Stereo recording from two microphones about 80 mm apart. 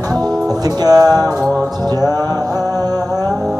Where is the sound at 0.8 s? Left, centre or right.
Right.